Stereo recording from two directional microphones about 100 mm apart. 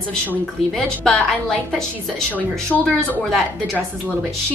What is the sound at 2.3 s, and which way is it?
Speech, 15° left (ahead or behind).